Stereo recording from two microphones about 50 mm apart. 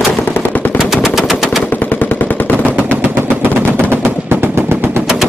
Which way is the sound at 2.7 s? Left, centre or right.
Right.